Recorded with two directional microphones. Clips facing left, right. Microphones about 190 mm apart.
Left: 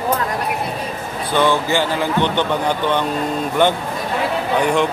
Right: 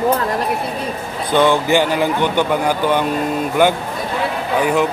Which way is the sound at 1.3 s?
15° right (ahead or behind).